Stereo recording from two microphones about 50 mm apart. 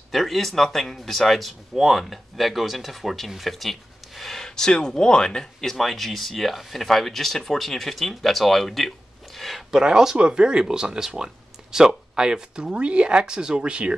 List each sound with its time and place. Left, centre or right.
0.1 s speech: centre; by 13.9 s right